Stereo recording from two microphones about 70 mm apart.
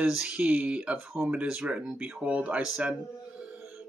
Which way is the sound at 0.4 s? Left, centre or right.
Centre.